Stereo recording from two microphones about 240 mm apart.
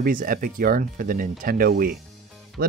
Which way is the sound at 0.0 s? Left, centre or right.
Right.